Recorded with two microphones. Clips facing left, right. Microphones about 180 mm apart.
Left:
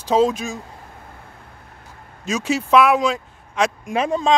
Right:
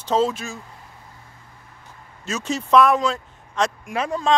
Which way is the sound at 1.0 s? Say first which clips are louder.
Left 5 dB; 60° left (ahead or behind).